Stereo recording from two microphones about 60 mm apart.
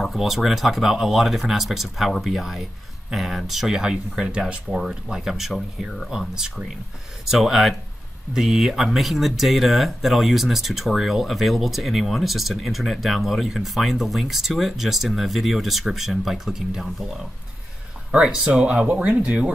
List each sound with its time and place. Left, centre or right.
0.0 s speech: centre
18.1 s speech: centre